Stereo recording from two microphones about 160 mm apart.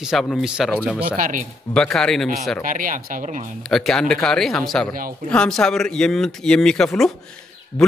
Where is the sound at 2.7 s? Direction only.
55° right (ahead or behind).